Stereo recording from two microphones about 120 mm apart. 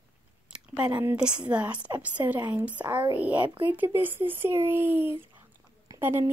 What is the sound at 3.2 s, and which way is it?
Speech, 10° right (ahead or behind).